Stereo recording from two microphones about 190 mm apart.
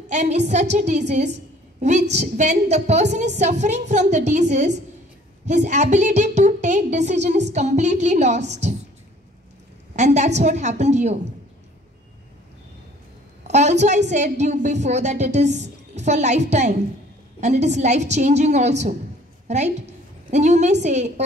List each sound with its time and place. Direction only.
0.1 s a woman's voice: 35° right (ahead or behind)
9.9 s a woman's voice: 40° right (ahead or behind)
13.5 s a woman's voice: 35° right (ahead or behind)